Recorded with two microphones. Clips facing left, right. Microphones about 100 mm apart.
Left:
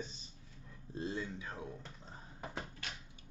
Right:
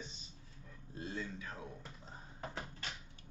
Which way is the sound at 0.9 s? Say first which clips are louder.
Left 3 dB; 25° left (ahead or behind).